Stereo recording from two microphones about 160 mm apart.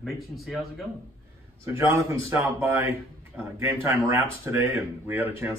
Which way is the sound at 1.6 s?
15° right (ahead or behind).